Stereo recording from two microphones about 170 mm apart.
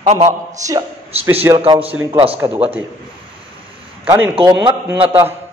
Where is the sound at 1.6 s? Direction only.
35° right (ahead or behind).